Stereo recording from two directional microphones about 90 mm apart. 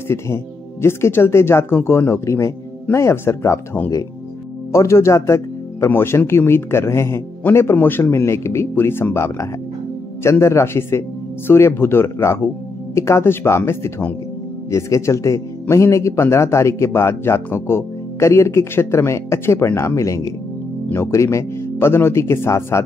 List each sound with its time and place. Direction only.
0.8 s speech: 25° left (ahead or behind)
4.7 s a man's voice: 30° left (ahead or behind)